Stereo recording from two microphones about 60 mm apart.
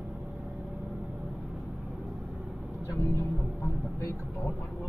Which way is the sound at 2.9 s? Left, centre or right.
Left.